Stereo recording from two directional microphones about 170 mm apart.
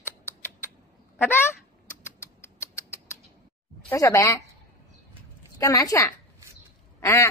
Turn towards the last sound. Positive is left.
turn(degrees=15)  # may be behind; listen again after turning